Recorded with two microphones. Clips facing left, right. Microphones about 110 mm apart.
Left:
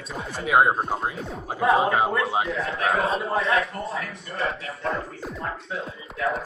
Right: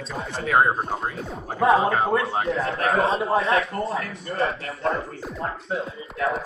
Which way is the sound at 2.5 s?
30° right (ahead or behind).